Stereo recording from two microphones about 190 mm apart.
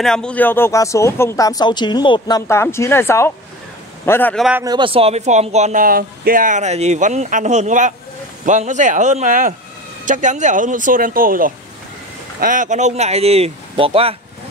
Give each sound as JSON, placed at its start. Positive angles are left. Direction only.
{"t": 0.0, "sound": "speech", "side_deg": 5}
{"t": 4.6, "sound": "speech", "side_deg": -25}